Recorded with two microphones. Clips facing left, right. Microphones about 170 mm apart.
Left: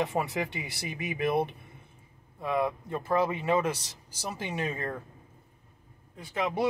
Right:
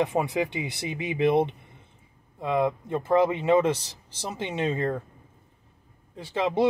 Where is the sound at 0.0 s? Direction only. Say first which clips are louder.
Right 5 dB; 20° right (ahead or behind).